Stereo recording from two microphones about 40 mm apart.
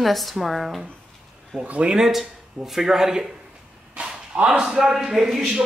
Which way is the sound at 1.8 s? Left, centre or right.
Centre.